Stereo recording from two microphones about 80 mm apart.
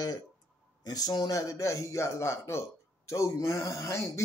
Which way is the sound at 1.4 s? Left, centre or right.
Left.